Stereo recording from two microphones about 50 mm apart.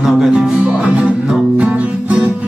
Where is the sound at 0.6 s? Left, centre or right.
Right.